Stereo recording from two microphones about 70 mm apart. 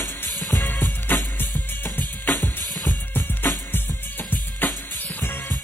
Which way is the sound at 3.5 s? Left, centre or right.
Left.